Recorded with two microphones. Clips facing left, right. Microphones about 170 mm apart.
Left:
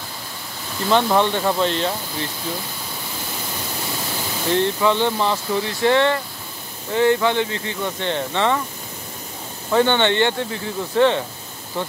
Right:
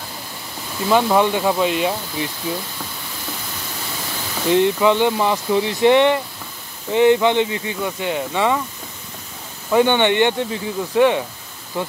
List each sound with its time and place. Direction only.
0.8 s speech: 5° right (ahead or behind)
4.5 s speech: 15° right (ahead or behind)
9.7 s speech: 15° right (ahead or behind)